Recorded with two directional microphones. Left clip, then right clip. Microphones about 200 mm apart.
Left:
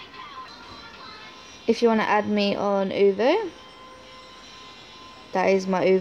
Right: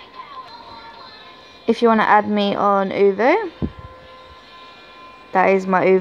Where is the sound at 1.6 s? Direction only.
20° right (ahead or behind).